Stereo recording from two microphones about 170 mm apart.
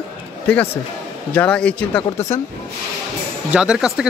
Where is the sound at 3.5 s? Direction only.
5° right (ahead or behind).